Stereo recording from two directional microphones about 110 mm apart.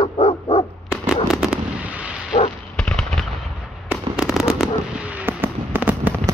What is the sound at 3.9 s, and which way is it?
Fireworks, 5° right (ahead or behind).